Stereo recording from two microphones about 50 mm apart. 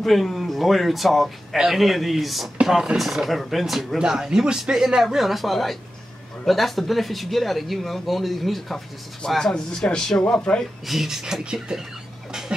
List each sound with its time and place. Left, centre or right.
0.0 s speech: centre
2.6 s speech: centre
9.5 s speech: centre
10.9 s speech: centre
12.3 s a sound: centre